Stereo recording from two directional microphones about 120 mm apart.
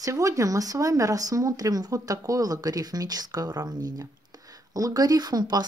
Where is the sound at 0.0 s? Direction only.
25° right (ahead or behind).